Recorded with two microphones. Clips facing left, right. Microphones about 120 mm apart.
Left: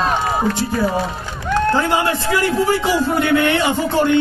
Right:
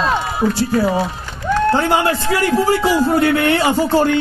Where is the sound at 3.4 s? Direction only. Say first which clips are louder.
Right 2 dB; 30° right (ahead or behind).